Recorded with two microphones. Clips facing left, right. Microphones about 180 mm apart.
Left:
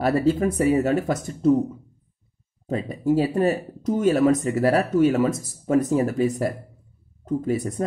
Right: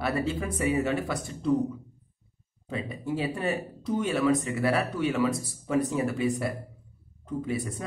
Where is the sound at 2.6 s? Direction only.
40° left (ahead or behind).